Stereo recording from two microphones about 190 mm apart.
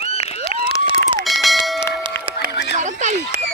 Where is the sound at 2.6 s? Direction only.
40° right (ahead or behind).